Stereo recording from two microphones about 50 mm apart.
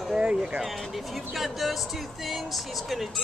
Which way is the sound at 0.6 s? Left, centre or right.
Centre.